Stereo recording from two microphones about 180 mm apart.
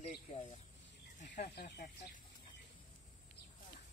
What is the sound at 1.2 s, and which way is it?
Speech, 45° left (ahead or behind).